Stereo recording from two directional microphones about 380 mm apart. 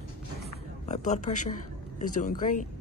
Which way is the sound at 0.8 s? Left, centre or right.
Centre.